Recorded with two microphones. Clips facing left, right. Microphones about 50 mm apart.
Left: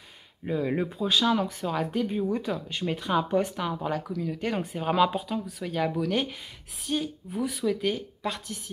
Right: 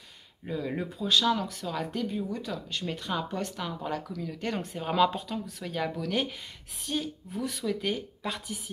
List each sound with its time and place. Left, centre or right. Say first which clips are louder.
0.5 s speech: left 5 dB; left
2.0 s speech: left 5 dB; left; by 8.5 s centre